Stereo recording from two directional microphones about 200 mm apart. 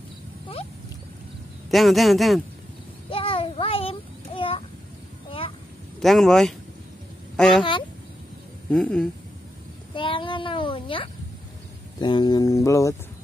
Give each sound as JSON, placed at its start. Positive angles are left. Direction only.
{"t": 1.7, "sound": "a man's voice", "side_deg": 0}
{"t": 3.1, "sound": "child singing", "side_deg": 30}
{"t": 5.9, "sound": "speech", "side_deg": 0}
{"t": 8.6, "sound": "speech", "side_deg": 5}
{"t": 9.9, "sound": "child singing", "side_deg": 25}
{"t": 12.0, "sound": "speech", "side_deg": 20}